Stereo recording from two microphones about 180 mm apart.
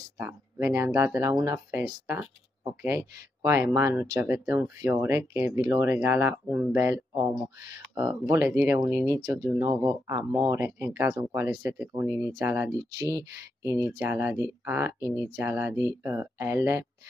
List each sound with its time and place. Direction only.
0.2 s speech: 15° right (ahead or behind)